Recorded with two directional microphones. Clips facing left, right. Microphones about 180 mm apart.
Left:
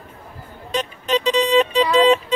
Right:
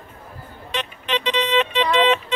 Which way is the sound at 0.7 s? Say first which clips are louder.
Left 5 dB; 40° left (ahead or behind).